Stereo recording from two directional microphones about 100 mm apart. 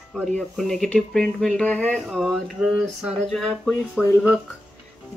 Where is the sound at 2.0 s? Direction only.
Centre (ahead or behind).